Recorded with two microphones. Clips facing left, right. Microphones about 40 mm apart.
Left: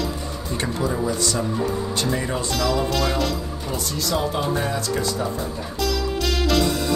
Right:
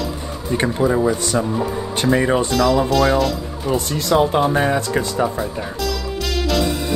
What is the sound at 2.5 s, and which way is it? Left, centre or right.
Speech, centre.